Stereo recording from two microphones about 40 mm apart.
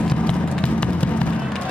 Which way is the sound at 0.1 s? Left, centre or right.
Left.